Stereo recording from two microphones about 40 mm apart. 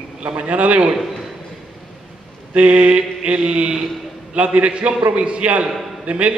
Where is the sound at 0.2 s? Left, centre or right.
Right.